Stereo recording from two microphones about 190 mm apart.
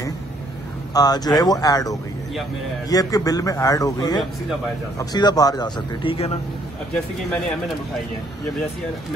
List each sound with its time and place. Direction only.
0.9 s a man's voice: 20° left (ahead or behind)
7.2 s speech: centre (ahead or behind)